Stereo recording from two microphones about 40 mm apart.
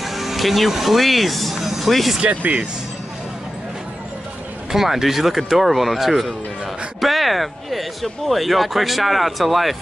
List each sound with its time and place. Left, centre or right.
0.0 s speech: centre
2.2 s speech: right
4.7 s speech: centre